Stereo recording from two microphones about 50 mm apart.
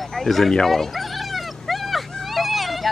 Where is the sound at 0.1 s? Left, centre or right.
Centre.